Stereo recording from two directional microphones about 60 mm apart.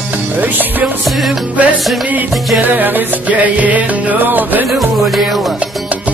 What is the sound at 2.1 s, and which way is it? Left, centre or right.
Music, right.